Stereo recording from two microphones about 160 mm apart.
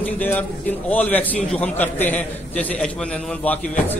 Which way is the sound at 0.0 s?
10° left (ahead or behind).